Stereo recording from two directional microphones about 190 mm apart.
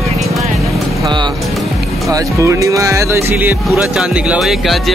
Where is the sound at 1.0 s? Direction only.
25° right (ahead or behind).